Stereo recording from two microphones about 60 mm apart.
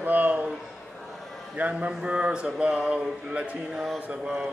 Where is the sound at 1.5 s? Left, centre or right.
Right.